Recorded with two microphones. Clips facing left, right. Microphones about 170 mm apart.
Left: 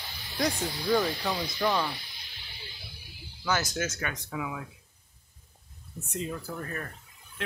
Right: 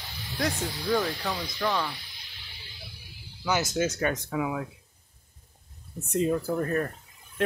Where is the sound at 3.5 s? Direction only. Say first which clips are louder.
Right 4 dB; 20° right (ahead or behind); by 4.6 s 50° right (ahead or behind).